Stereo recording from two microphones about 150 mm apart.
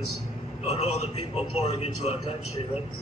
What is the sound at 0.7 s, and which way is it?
A man's voice, 45° left (ahead or behind).